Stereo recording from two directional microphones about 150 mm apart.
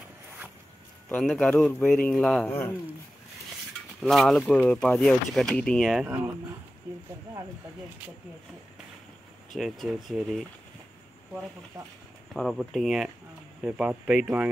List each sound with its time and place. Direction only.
1.2 s speech: 5° left (ahead or behind)
4.0 s speech: centre (ahead or behind)
6.0 s speech: 15° right (ahead or behind)
9.6 s speech: centre (ahead or behind)
12.4 s speech: centre (ahead or behind)